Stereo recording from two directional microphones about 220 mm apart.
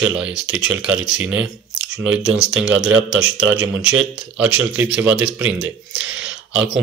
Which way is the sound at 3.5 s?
5° right (ahead or behind).